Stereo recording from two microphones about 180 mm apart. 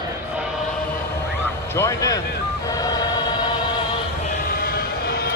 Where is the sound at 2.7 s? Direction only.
20° left (ahead or behind).